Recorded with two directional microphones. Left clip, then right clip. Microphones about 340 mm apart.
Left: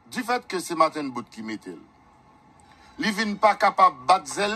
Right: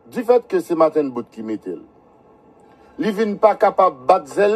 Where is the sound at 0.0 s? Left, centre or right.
Left.